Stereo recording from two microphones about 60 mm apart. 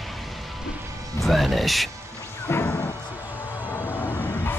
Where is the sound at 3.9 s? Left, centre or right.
Left.